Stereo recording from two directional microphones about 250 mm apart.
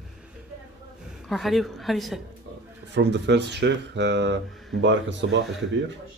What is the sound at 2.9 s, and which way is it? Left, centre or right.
Speech, right.